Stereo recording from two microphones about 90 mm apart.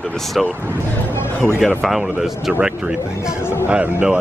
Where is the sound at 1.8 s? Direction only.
Centre (ahead or behind).